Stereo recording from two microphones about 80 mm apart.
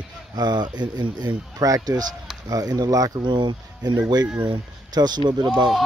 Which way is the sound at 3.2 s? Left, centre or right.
Right.